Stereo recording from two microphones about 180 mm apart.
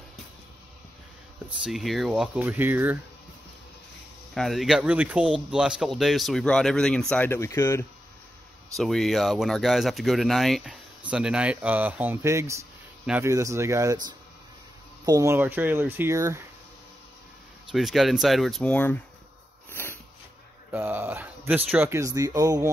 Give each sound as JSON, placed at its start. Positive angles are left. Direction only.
{"t": 1.6, "sound": "speech", "side_deg": 0}
{"t": 4.3, "sound": "speech", "side_deg": 0}
{"t": 8.7, "sound": "speech", "side_deg": 0}
{"t": 17.6, "sound": "speech", "side_deg": 0}
{"t": 19.7, "sound": "a sound", "side_deg": 10}
{"t": 20.7, "sound": "speech", "side_deg": -10}